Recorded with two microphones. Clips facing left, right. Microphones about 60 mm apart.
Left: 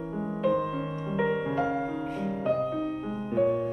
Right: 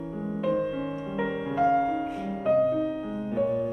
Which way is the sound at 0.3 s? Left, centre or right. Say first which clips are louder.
Even; centre.